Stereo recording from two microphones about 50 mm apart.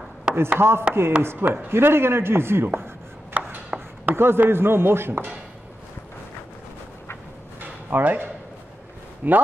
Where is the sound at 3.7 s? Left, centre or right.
Centre.